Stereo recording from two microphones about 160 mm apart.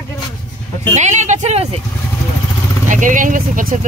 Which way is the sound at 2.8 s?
55° right (ahead or behind).